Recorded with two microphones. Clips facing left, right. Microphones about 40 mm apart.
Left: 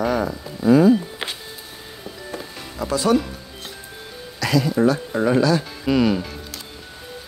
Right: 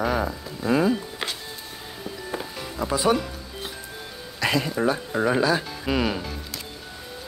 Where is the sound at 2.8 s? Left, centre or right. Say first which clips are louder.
Left 2 dB; centre.